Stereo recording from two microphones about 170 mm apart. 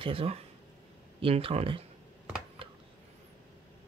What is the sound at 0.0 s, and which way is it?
Speech, 35° right (ahead or behind).